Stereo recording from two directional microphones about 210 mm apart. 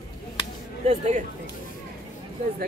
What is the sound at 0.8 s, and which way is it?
Speech, 35° right (ahead or behind).